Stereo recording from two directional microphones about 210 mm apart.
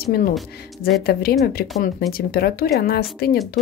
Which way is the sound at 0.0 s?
45° left (ahead or behind).